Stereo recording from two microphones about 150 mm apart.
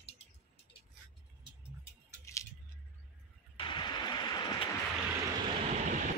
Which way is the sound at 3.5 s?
30° left (ahead or behind).